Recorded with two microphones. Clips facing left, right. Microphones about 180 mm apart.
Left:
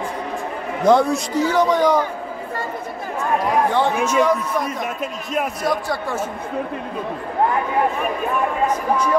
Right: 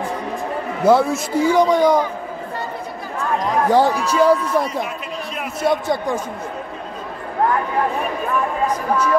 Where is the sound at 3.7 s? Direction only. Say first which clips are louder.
Right 2 dB; 35° right (ahead or behind); by 6.2 s 20° right (ahead or behind).